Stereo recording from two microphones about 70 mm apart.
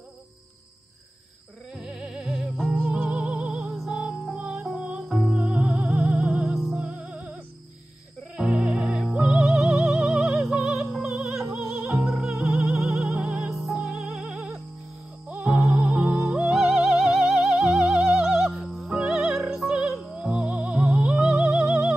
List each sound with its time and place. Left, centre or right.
1.7 s music: centre
2.2 s music: centre
5.8 s music: centre
6.8 s music: right
8.4 s music: centre
8.9 s music: centre
11.4 s music: right
12.4 s music: centre
16.5 s music: centre
20.9 s music: centre
21.2 s music: centre